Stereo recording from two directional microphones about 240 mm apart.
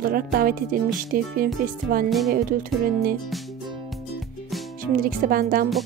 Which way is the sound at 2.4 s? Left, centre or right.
Right.